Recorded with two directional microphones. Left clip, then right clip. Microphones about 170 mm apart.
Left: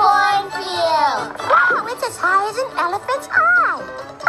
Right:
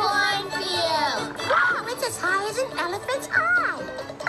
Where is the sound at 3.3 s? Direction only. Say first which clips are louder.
Left 8 dB; 25° right (ahead or behind).